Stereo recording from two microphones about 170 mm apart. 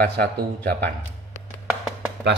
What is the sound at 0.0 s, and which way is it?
Speech, 65° right (ahead or behind).